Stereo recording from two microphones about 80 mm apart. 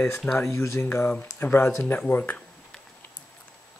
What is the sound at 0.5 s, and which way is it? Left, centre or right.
Speech, left.